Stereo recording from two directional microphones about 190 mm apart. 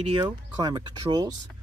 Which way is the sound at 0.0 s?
25° right (ahead or behind).